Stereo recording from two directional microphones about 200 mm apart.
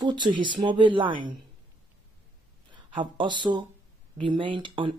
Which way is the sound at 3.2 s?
25° right (ahead or behind).